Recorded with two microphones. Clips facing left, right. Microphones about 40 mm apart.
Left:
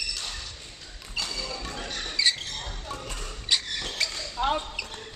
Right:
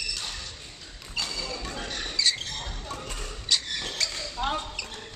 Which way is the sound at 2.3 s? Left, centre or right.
Centre.